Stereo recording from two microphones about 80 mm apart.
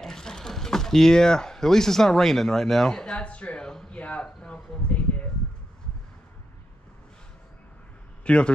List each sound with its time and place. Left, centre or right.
0.0 s speech: centre
8.3 s a man's voice: centre